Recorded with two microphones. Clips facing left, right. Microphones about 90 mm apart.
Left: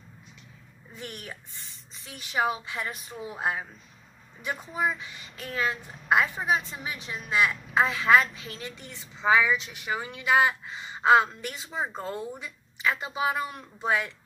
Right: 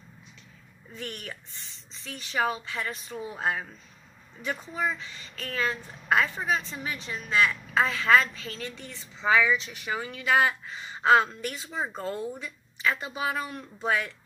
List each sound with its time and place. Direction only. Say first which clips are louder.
0.9 s speech: right 2 dB; 15° left (ahead or behind)